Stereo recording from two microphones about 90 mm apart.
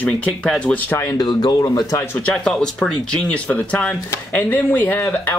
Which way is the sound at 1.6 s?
35° left (ahead or behind).